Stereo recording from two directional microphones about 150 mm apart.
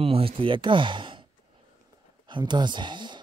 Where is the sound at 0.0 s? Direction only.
40° right (ahead or behind).